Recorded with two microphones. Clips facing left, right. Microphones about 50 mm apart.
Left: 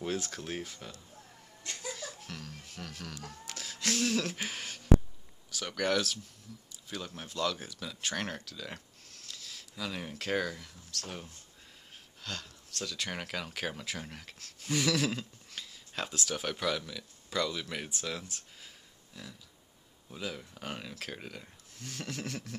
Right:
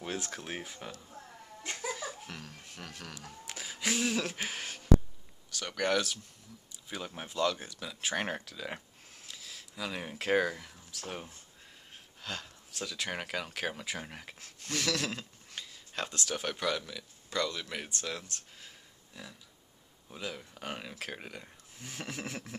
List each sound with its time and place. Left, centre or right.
0.0 s speech: centre
1.7 s laughter: right
2.0 s music: centre
5.5 s speech: centre
14.6 s speech: centre